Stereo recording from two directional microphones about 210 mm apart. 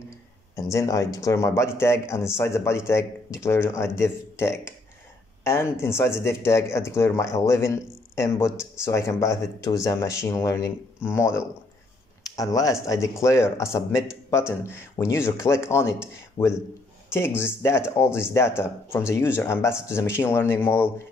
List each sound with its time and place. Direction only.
0.6 s speech: 15° left (ahead or behind)
12.4 s speech: 15° left (ahead or behind)